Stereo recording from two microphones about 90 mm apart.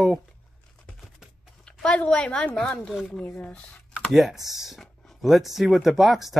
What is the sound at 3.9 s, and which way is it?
Speech, 5° right (ahead or behind).